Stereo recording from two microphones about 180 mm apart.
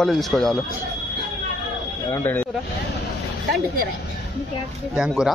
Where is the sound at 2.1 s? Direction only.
10° left (ahead or behind).